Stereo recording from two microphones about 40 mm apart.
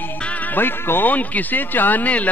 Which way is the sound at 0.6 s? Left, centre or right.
Left.